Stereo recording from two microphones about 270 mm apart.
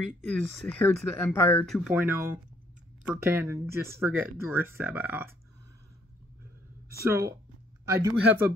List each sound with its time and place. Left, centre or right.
0.3 s speech: centre
7.0 s speech: centre